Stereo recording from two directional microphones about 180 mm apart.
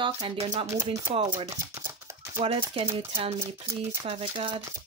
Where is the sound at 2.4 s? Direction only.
30° right (ahead or behind).